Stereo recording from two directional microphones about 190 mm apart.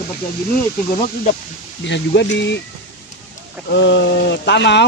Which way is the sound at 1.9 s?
70° left (ahead or behind).